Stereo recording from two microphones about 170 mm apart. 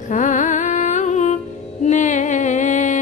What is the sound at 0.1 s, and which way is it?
Music, 45° left (ahead or behind).